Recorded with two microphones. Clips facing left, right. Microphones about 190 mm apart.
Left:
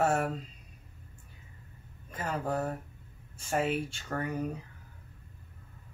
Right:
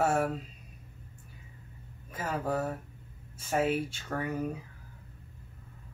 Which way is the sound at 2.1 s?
5° right (ahead or behind).